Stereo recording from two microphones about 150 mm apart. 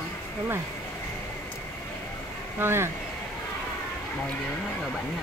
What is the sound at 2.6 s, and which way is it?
Speech, 15° right (ahead or behind).